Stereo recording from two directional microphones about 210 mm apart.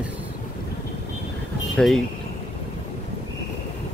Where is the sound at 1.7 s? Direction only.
Centre (ahead or behind).